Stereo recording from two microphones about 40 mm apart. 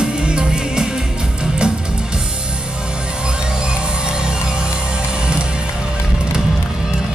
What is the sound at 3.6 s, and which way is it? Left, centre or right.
Music, right.